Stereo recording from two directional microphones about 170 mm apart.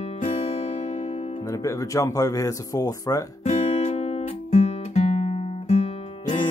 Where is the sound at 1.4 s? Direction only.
20° left (ahead or behind).